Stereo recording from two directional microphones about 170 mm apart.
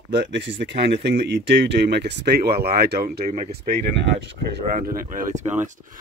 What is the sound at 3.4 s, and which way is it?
Speech, 80° right.